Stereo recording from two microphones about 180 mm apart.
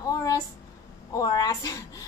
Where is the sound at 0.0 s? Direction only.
20° left (ahead or behind).